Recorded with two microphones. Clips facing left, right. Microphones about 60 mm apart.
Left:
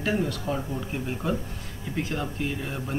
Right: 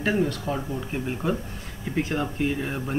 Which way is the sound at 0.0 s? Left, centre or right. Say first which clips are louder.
Right 3 dB; centre.